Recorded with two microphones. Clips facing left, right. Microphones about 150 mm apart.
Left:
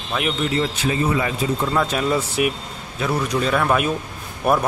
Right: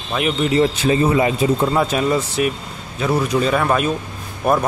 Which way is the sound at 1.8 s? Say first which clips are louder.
Right 3 dB; 5° right (ahead or behind).